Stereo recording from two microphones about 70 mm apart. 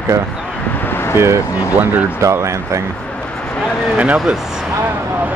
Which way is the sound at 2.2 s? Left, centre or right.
Right.